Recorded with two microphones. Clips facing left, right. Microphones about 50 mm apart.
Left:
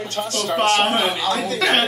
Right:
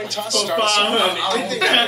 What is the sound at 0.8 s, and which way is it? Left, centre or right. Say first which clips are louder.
A man's voice: right 1 dB; centre.